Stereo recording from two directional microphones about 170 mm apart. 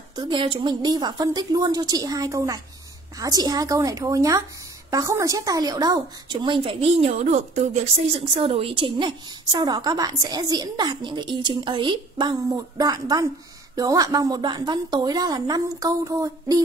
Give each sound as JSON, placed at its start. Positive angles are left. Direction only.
{"t": 0.1, "sound": "a woman's voice", "side_deg": -25}